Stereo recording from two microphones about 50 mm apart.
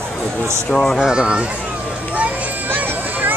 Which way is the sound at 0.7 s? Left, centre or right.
Centre.